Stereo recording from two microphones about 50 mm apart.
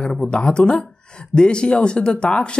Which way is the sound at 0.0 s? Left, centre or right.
Left.